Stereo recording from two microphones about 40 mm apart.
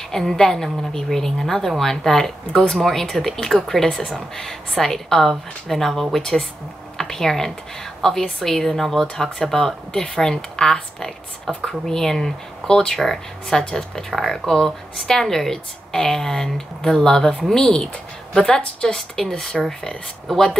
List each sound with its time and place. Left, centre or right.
0.1 s speech: centre